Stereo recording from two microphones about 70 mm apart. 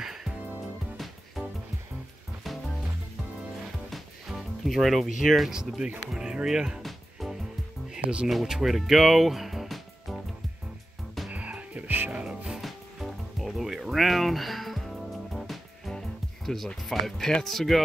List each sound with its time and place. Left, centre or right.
0.0 s music: centre
3.9 s speech: centre
6.8 s music: centre
7.9 s speech: centre
11.2 s music: centre
16.4 s speech: centre